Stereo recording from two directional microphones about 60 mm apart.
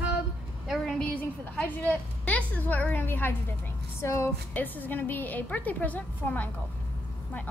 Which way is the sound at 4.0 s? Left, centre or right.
Left.